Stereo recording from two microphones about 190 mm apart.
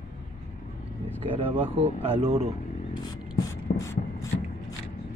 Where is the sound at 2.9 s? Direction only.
20° left (ahead or behind).